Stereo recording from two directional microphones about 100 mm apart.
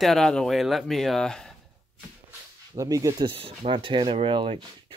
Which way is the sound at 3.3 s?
60° right (ahead or behind).